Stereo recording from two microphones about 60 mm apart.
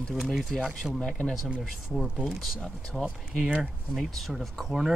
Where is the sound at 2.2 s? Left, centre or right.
Centre.